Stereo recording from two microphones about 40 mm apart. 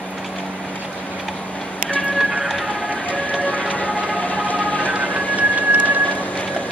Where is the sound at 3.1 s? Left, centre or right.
Left.